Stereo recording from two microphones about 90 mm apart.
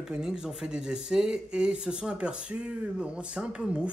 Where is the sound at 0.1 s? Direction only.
5° right (ahead or behind).